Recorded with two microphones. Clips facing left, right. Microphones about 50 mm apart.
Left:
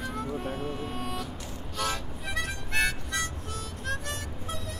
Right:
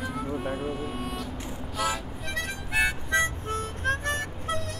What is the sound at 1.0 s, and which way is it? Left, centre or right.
Vehicle, centre.